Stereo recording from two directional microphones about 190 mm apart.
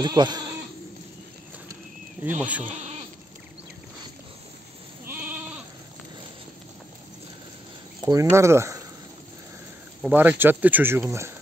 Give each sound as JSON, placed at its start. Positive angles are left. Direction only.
{"t": 0.0, "sound": "speech", "side_deg": -20}
{"t": 2.2, "sound": "speech", "side_deg": -10}
{"t": 5.0, "sound": "goat", "side_deg": -10}
{"t": 8.0, "sound": "speech", "side_deg": -15}
{"t": 10.0, "sound": "speech", "side_deg": -10}